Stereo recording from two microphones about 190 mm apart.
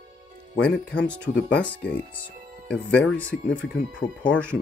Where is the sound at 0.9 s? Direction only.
5° left (ahead or behind).